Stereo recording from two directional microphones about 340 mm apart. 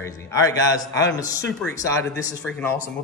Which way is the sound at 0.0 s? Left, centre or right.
Centre.